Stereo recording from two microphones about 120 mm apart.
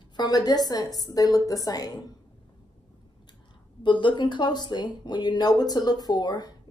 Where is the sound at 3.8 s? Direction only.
40° left (ahead or behind).